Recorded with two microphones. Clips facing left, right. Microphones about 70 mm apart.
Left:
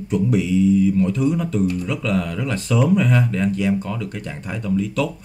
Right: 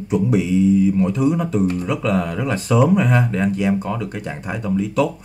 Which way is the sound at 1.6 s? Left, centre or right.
Right.